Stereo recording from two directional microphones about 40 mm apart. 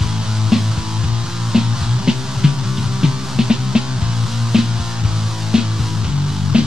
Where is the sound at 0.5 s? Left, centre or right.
Centre.